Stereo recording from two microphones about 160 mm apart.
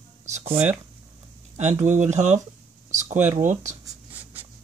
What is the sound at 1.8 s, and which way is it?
Speech, 50° right (ahead or behind).